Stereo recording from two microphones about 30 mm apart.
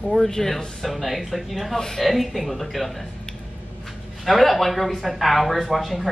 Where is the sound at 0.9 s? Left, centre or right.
Centre.